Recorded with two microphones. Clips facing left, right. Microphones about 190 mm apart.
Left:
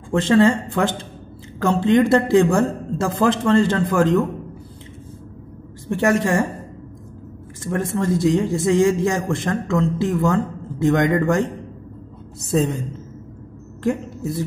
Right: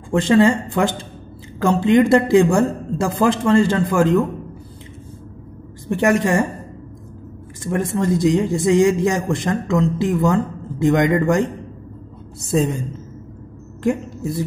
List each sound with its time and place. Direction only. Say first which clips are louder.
0.1 s speech: right 1 dB; 10° right (ahead or behind)
5.9 s speech: right 1 dB; 15° right (ahead or behind)
7.6 s speech: right 2 dB; 15° right (ahead or behind)
12.5 s speech: right 1 dB; 10° right (ahead or behind)